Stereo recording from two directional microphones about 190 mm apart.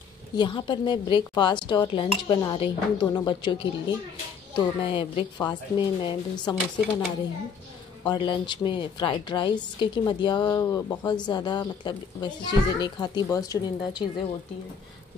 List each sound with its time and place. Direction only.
0.4 s a woman's voice: 25° left (ahead or behind)
8.0 s a woman's voice: 25° left (ahead or behind)